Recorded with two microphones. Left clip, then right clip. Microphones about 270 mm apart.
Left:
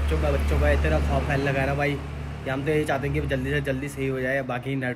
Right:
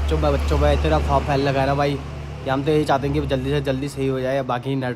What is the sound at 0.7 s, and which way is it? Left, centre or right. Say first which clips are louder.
Speech: right 5 dB; centre.